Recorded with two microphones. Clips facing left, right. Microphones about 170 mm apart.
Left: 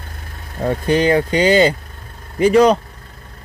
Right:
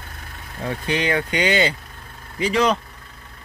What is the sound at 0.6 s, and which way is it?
Speech, 45° left (ahead or behind).